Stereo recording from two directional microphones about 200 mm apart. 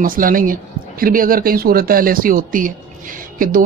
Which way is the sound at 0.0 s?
45° right (ahead or behind).